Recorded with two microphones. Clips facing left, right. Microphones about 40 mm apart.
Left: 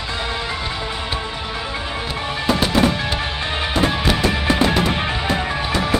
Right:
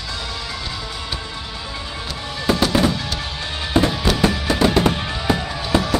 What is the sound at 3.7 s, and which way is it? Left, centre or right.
Music, centre.